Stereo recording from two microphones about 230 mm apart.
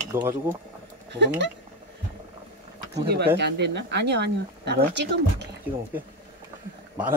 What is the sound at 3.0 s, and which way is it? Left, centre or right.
Speech, right.